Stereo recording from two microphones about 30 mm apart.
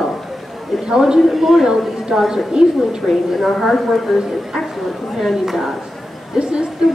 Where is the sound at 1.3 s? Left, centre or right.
Centre.